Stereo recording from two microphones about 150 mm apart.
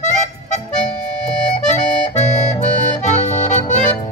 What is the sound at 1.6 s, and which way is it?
Accordion, 50° left (ahead or behind).